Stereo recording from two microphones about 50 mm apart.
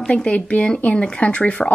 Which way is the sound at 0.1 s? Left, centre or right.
Left.